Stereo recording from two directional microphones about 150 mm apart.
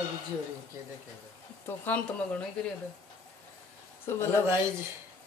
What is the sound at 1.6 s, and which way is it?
Speech, 10° left (ahead or behind).